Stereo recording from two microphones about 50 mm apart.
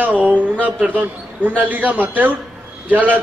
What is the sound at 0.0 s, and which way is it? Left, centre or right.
A man's voice, right.